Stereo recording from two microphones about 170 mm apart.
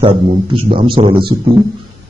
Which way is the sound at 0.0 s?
30° right (ahead or behind).